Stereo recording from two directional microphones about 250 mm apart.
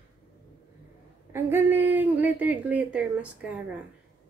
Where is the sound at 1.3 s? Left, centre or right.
Centre.